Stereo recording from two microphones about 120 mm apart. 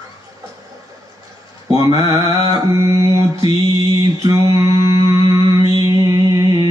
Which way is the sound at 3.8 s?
25° right (ahead or behind).